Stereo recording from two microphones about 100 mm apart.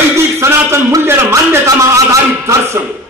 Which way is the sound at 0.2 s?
25° right (ahead or behind).